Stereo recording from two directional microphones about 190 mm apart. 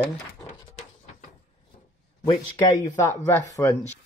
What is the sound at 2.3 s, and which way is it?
Speech, 25° left (ahead or behind).